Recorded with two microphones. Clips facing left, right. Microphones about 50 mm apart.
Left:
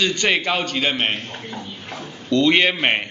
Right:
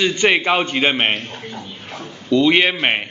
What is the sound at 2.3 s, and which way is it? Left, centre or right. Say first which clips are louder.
Speech: right 2 dB; centre.